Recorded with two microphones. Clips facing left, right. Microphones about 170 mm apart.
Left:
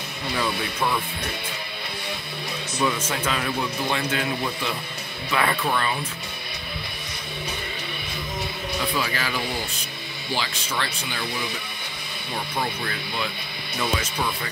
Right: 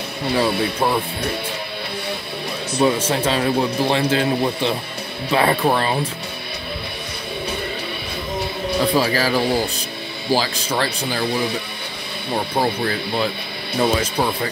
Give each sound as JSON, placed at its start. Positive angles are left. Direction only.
{"t": 0.3, "sound": "speech", "side_deg": -35}
{"t": 2.8, "sound": "speech", "side_deg": -30}
{"t": 8.7, "sound": "speech", "side_deg": -35}
{"t": 12.6, "sound": "speech", "side_deg": -35}